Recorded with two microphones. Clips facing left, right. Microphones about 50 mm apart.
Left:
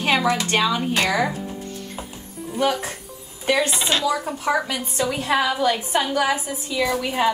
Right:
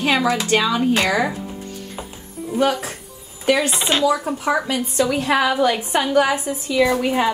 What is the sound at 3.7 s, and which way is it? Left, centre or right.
Speech, right.